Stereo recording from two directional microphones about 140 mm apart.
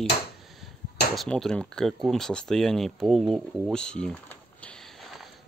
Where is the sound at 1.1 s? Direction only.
5° left (ahead or behind).